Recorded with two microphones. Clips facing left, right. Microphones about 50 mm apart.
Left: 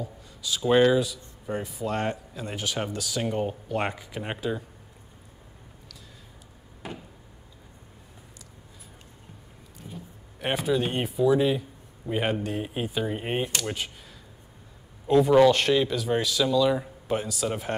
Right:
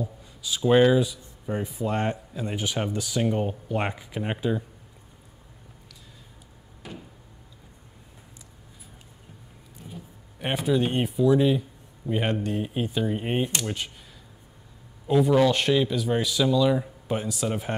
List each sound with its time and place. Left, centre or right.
0.0 s a sound: centre
0.6 s speech: centre
1.4 s speech: centre
6.8 s a sound: left
9.8 s vehicle: centre
10.4 s speech: centre
15.0 s speech: centre